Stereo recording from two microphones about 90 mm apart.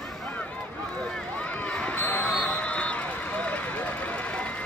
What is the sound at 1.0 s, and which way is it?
Run, 15° left (ahead or behind).